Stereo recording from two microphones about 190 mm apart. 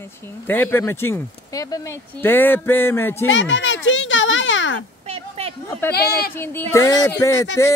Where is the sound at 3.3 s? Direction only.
80° left.